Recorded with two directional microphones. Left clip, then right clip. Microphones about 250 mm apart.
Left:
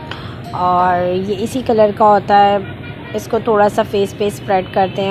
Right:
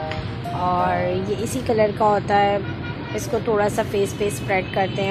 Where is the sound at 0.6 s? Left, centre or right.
Centre.